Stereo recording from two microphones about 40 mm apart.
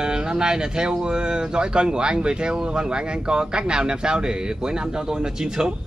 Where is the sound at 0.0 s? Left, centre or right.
Right.